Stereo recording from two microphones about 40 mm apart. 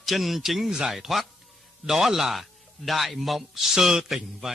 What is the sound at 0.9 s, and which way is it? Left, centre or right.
A man's voice, centre.